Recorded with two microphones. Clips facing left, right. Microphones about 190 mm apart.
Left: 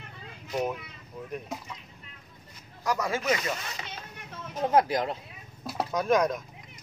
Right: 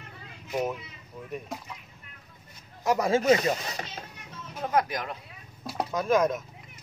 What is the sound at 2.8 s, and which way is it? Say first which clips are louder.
Speech: right 5 dB; 25° right (ahead or behind).